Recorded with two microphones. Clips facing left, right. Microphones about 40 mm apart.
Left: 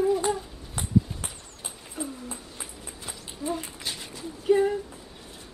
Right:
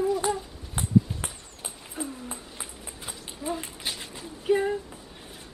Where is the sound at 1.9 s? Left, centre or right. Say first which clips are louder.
Even; centre.